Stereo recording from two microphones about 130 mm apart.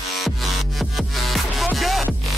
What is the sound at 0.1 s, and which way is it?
Music, centre (ahead or behind).